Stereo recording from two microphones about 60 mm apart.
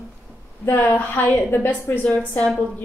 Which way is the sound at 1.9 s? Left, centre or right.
Left.